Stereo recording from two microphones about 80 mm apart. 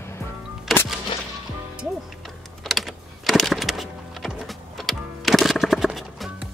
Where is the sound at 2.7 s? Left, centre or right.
Centre.